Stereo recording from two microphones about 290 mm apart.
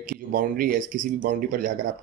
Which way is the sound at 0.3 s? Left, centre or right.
Right.